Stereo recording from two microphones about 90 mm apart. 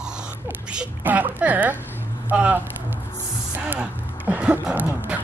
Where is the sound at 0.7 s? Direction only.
15° right (ahead or behind).